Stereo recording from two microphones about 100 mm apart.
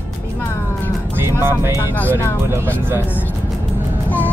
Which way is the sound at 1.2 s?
25° right (ahead or behind).